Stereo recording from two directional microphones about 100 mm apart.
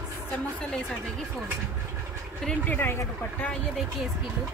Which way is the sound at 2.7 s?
20° left (ahead or behind).